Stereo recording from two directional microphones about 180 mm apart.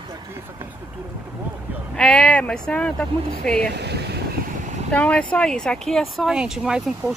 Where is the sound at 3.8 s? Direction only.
65° right (ahead or behind).